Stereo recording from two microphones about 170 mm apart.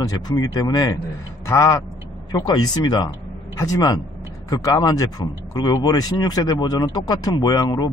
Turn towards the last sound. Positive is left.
turn(degrees=25)  # may be behind; listen again after turning